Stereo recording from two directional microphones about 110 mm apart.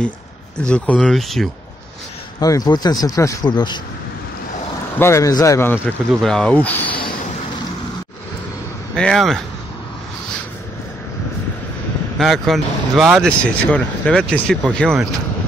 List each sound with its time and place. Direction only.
0.7 s speech: 10° left (ahead or behind)
2.4 s speech: 35° left (ahead or behind)
4.9 s speech: 25° left (ahead or behind)
6.2 s speech: 10° left (ahead or behind)
8.9 s speech: 5° left (ahead or behind)
12.2 s speech: centre (ahead or behind)